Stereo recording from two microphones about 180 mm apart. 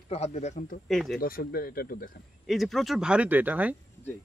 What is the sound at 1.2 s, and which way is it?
Speech, 55° left (ahead or behind).